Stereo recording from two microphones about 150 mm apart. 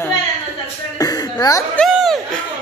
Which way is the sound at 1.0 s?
25° left (ahead or behind).